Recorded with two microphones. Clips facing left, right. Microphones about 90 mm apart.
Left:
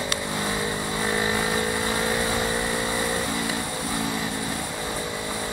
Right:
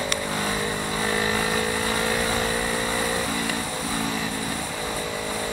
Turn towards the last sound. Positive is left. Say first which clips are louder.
# right 1 dB
turn(degrees=5)  # may be behind; listen again after turning